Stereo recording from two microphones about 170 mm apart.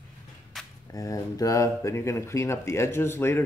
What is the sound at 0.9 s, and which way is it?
Speech, 20° left (ahead or behind).